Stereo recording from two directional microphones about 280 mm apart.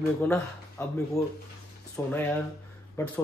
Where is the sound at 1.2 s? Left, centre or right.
Centre.